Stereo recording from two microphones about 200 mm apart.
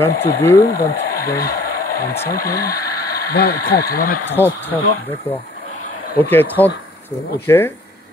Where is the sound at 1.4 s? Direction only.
50° left (ahead or behind).